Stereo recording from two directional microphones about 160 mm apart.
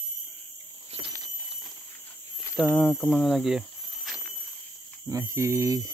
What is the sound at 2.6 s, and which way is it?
Speech, centre (ahead or behind).